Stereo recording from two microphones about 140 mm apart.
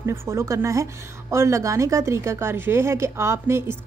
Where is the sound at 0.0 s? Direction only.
20° right (ahead or behind).